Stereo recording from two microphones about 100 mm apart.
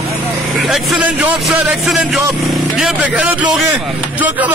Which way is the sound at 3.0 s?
15° right (ahead or behind).